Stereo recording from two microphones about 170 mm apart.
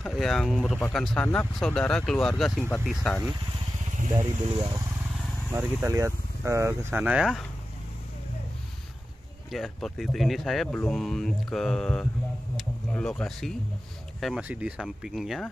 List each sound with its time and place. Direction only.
0.0 s speech: centre (ahead or behind)
4.6 s speech: 20° right (ahead or behind); by 7.4 s 5° right (ahead or behind)
9.5 s speech: centre (ahead or behind)